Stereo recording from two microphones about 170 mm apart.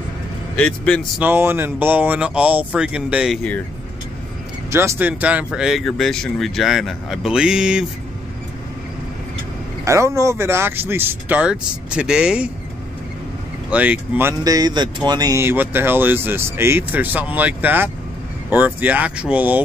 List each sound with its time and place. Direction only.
0.6 s speech: 5° left (ahead or behind)
1.2 s speech: 10° right (ahead or behind)
4.7 s speech: 15° right (ahead or behind)
9.8 s speech: 15° right (ahead or behind)
13.7 s speech: 10° right (ahead or behind)